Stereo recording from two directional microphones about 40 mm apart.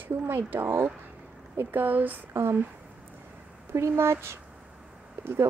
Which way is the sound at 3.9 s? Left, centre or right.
Right.